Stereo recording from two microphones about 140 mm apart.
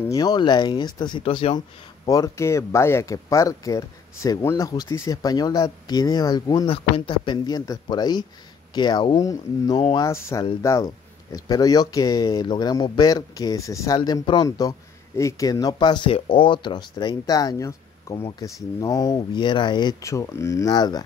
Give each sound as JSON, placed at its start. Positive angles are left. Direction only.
{"t": 0.1, "sound": "speech", "side_deg": 30}
{"t": 2.0, "sound": "a man's voice", "side_deg": 25}